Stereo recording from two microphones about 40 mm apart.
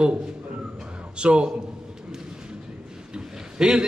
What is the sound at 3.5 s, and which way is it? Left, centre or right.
Speech, right.